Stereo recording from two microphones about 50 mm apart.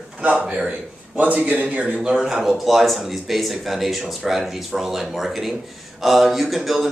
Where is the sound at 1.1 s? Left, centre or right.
Right.